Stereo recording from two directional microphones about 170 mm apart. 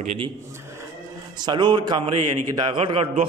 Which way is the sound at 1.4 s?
25° right (ahead or behind).